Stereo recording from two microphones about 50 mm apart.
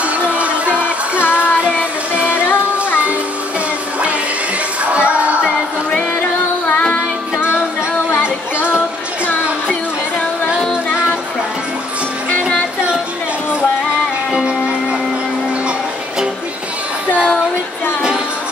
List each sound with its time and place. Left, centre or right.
0.0 s music: right
1.3 s child singing: right
4.9 s music: right
6.6 s music: left
8.1 s child singing: left
14.3 s music: right
17.1 s music: left